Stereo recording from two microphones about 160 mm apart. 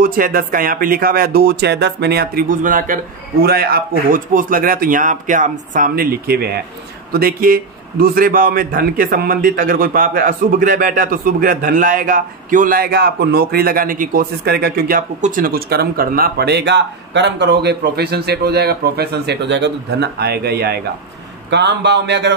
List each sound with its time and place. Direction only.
0.0 s speech: 65° right (ahead or behind)
3.4 s a man's voice: 70° right (ahead or behind)
21.5 s speech: 90° right